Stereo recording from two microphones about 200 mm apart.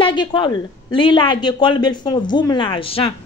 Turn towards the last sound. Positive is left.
turn(degrees=25)  # may be behind; listen again after turning